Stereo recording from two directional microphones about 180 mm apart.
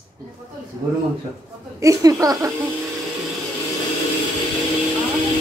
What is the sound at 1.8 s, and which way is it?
Speech, 15° right (ahead or behind).